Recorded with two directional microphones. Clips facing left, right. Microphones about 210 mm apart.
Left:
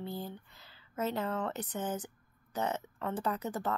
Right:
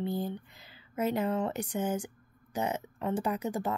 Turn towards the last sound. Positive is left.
turn(degrees=-10)  # may be behind; listen again after turning